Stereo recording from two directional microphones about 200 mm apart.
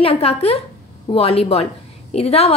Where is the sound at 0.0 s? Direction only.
30° left (ahead or behind).